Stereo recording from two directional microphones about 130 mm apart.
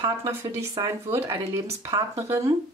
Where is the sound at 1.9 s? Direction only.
35° right (ahead or behind).